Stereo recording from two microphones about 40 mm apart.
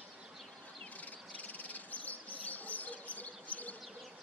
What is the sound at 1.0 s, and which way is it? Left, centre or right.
Bird, left.